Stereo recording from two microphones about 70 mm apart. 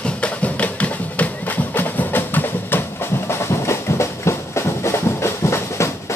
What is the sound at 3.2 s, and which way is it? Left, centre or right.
Music, left.